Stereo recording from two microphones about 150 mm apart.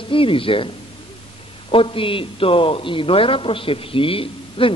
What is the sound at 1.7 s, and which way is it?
A man's voice, 35° left (ahead or behind).